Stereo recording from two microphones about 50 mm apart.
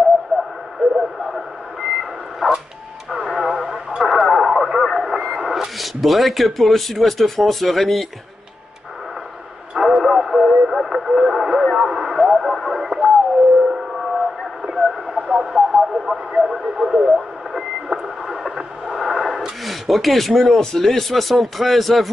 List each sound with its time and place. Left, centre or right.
0.9 s reversing beeps: centre
3.1 s radio: centre
9.8 s radio: centre
13.6 s civil defense siren: centre
14.6 s radio: centre
19.6 s speech: centre